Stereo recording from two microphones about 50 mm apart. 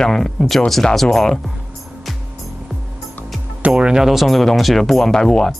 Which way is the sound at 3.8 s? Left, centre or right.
Centre.